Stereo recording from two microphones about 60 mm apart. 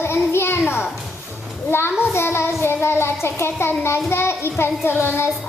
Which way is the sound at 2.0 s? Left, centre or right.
Left.